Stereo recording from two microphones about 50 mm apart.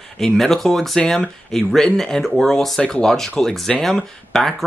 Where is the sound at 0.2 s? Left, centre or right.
Centre.